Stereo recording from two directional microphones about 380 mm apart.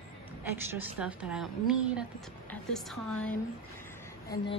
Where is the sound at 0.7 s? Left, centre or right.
Centre.